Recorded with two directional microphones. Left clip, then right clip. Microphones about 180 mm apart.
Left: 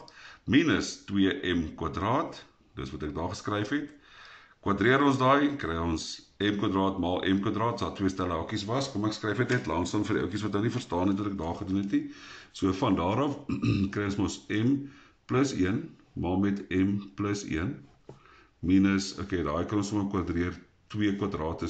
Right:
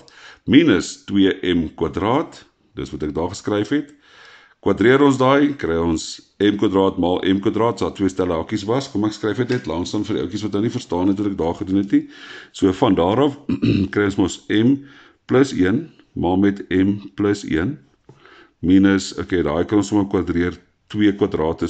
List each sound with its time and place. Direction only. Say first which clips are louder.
0.2 s speech: right 11 dB; 35° right (ahead or behind)
18.7 s speech: right 10 dB; 40° right (ahead or behind)